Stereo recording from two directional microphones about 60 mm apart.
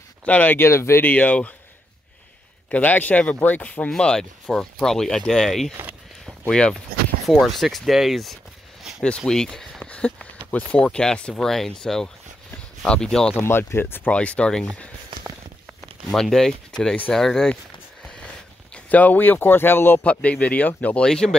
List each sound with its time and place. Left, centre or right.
0.2 s speech: left
0.7 s speech: left
1.0 s speech: left
2.7 s speech: left
3.9 s speech: centre
7.2 s speech: centre
13.4 s speech: left
14.1 s speech: centre
16.1 s speech: centre
18.9 s speech: left
20.0 s speech: left
21.0 s speech: centre